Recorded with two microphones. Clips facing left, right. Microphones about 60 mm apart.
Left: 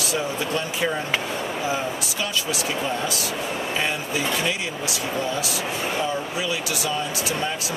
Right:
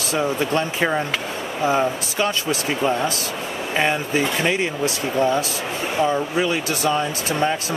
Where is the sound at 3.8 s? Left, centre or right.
Right.